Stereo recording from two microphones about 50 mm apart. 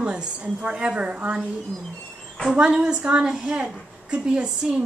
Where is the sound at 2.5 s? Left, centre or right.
Centre.